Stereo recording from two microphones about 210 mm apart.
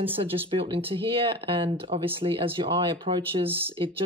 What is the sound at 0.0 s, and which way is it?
Speech, 25° right (ahead or behind).